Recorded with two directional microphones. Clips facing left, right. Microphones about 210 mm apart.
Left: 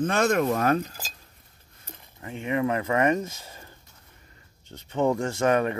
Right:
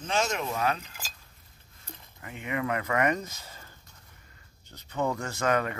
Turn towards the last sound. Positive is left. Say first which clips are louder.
# left 5 dB
turn(degrees=25)  # may be behind; listen again after turning